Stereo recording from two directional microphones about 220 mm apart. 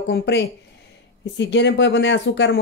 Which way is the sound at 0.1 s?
50° left (ahead or behind).